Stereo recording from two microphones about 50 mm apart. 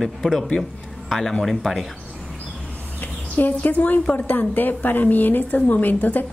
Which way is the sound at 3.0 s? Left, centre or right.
Left.